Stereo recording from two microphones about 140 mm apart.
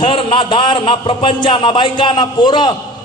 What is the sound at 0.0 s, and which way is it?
A man's voice, 35° left (ahead or behind).